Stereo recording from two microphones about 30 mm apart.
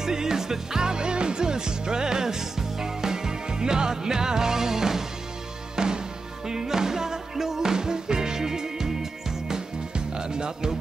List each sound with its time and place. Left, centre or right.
0.0 s music: centre
9.9 s music: right